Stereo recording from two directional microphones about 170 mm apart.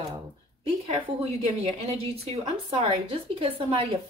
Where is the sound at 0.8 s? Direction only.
40° right (ahead or behind).